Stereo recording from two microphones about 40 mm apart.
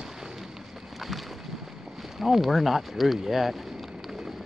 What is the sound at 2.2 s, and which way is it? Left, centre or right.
Speech, centre.